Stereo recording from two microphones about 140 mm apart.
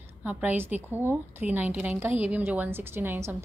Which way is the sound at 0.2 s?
10° right (ahead or behind).